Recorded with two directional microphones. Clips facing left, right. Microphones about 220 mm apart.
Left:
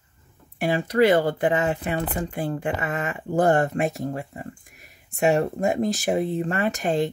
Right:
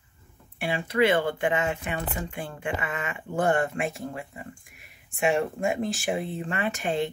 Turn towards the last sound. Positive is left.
turn(degrees=40)  # may be behind; listen again after turning